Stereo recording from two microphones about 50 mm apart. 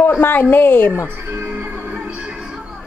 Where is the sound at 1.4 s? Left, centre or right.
Right.